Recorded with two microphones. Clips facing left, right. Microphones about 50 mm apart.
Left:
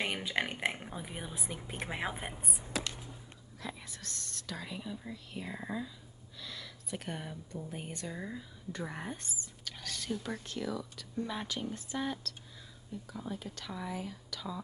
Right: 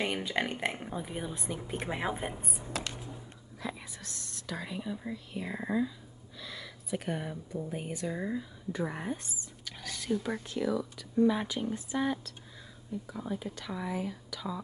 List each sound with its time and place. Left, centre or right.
0.0 s speech: centre
2.8 s a sound: right
3.5 s speech: centre